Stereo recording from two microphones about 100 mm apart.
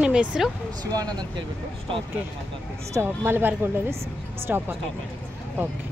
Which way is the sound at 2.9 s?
25° right (ahead or behind).